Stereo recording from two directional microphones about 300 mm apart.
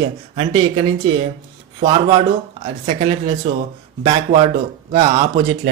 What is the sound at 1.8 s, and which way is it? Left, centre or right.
Speech, centre.